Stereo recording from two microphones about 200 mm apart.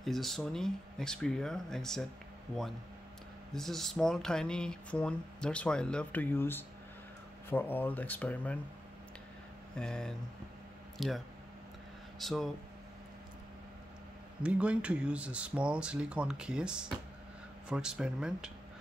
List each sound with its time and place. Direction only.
0.0 s speech: centre (ahead or behind)
3.5 s speech: centre (ahead or behind)
9.8 s speech: 5° left (ahead or behind)
14.4 s speech: 5° right (ahead or behind)